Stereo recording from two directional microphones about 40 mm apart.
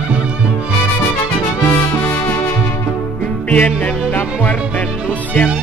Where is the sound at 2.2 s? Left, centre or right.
Left.